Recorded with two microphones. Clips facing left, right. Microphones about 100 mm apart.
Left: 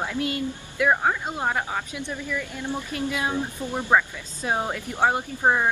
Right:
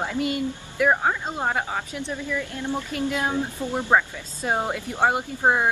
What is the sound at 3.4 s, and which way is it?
A woman's voice, 15° right (ahead or behind).